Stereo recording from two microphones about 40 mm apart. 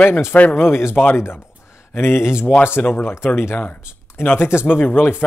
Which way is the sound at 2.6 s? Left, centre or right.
Left.